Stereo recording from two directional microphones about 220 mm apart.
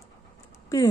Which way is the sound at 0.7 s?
15° left (ahead or behind).